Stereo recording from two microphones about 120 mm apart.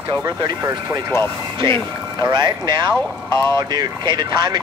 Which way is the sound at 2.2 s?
30° right (ahead or behind).